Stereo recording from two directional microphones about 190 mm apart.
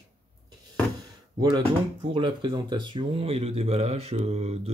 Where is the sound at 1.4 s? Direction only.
25° right (ahead or behind).